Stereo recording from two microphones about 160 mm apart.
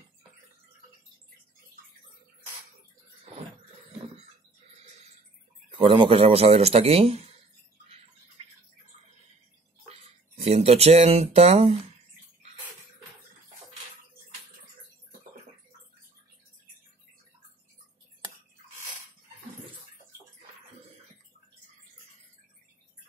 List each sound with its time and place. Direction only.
5.7 s a man's voice: 30° right (ahead or behind)
9.8 s speech: 40° right (ahead or behind)